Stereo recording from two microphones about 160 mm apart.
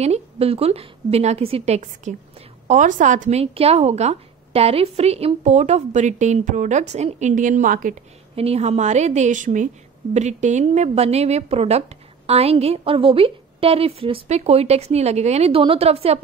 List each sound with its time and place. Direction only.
0.0 s a woman's voice: 40° right (ahead or behind)
2.7 s speech: 50° right (ahead or behind)
8.4 s a woman's voice: 40° right (ahead or behind)